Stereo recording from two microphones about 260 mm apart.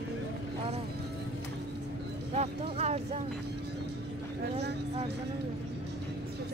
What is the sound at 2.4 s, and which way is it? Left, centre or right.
Vehicle, right.